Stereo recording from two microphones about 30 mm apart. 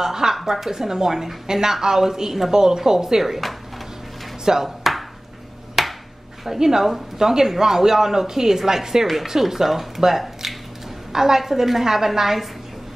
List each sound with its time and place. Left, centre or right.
0.0 s a woman's voice: centre
4.6 s chopping: centre
5.8 s a sound: centre
6.4 s speech: centre
10.4 s a sound: centre
11.1 s speech: centre